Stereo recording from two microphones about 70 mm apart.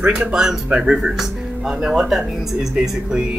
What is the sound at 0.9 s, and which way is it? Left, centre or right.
Speech, centre.